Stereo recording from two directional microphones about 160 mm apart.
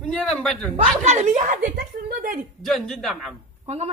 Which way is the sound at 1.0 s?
45° right (ahead or behind).